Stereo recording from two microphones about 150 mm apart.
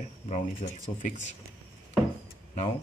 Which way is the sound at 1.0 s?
55° left (ahead or behind).